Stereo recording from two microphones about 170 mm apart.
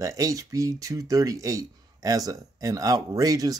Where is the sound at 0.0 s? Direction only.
20° right (ahead or behind).